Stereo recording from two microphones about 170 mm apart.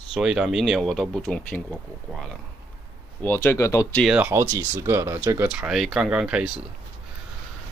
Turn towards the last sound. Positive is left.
turn(degrees=-5)  # may be behind; listen again after turning